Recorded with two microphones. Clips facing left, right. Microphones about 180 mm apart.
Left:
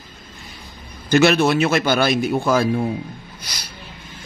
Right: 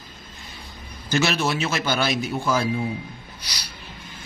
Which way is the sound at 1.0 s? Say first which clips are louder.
Left 8 dB; 60° left (ahead or behind).